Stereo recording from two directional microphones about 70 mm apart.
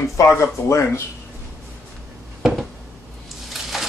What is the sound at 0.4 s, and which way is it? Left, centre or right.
Speech, left.